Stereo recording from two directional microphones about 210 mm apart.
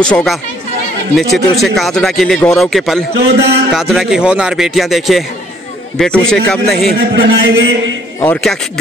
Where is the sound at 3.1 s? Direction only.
50° right (ahead or behind).